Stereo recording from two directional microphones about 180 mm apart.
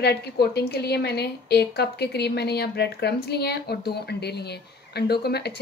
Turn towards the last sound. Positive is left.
turn(degrees=65)  # may be behind; listen again after turning